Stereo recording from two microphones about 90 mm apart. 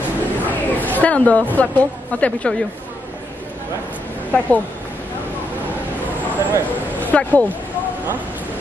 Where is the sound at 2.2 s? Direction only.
15° left (ahead or behind).